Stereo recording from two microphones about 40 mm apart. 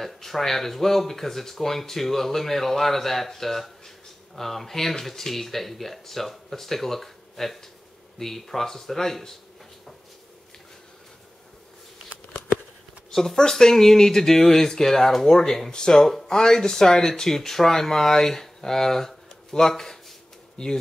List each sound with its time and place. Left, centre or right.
0.0 s speech: centre
12.3 s a sound: left
13.1 s speech: centre
20.6 s speech: centre